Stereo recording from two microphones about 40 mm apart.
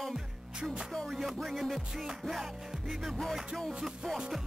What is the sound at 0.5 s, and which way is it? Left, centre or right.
Music, right.